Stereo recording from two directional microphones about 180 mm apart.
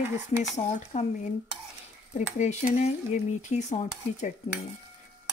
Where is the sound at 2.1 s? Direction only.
45° left (ahead or behind).